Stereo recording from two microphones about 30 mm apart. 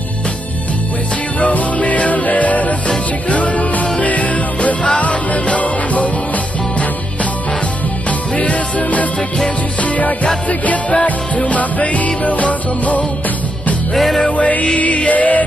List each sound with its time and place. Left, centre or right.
1.4 s music: left
8.4 s music: left
11.4 s music: left
13.9 s music: centre
14.3 s music: left